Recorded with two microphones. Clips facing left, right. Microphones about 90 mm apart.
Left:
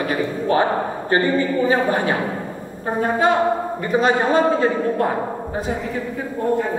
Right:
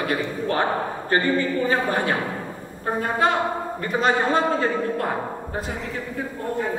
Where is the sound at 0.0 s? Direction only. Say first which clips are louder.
Left 3 dB; 10° left (ahead or behind).